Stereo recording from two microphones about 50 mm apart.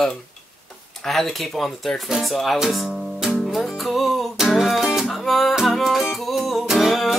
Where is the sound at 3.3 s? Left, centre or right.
Centre.